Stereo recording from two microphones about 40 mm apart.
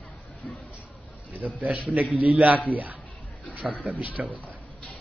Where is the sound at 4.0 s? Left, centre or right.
Right.